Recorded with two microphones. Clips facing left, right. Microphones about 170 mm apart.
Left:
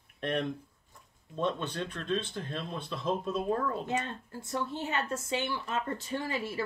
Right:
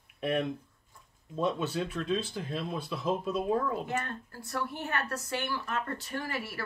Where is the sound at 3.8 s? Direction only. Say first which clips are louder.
Left 1 dB; 20° left (ahead or behind).